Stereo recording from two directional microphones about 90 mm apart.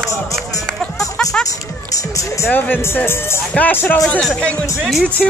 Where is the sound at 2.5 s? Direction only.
20° left (ahead or behind).